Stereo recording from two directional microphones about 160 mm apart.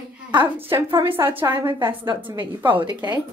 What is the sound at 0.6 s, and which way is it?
Laughter, 15° right (ahead or behind).